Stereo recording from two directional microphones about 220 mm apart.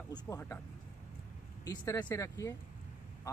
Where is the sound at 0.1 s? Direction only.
15° left (ahead or behind).